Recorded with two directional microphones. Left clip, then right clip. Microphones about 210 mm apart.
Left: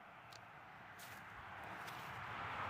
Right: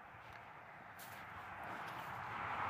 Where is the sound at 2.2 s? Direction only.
35° right (ahead or behind).